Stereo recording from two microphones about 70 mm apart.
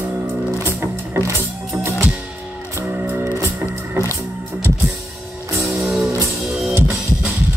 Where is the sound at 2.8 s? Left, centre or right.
Right.